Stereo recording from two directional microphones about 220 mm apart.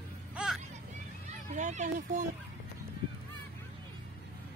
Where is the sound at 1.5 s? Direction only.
30° right (ahead or behind).